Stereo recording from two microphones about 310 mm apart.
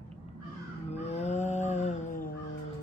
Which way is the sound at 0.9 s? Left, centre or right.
Left.